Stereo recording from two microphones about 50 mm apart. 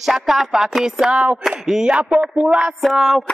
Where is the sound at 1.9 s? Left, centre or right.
Centre.